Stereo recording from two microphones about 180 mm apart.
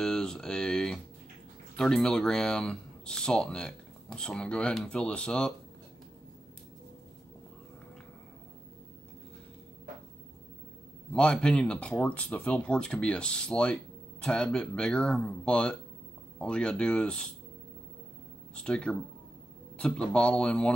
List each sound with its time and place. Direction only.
0.0 s a sound: 5° left (ahead or behind)
1.8 s speech: 5° left (ahead or behind)
11.1 s speech: 5° left (ahead or behind)
18.5 s speech: 5° left (ahead or behind)